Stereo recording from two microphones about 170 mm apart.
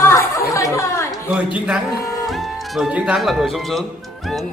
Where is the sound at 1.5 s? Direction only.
5° right (ahead or behind).